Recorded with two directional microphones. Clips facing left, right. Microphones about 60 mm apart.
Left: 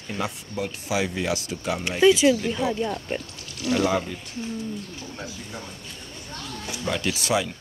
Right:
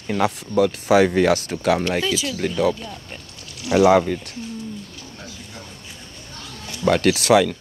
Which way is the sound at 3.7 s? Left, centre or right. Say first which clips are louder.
Right 8 dB; right.